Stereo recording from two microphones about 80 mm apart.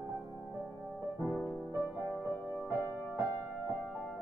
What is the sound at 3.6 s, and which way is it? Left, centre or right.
Music, centre.